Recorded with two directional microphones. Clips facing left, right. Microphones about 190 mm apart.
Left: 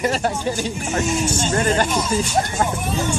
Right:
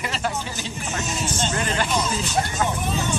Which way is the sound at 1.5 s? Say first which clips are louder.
Left 7 dB; 45° left (ahead or behind).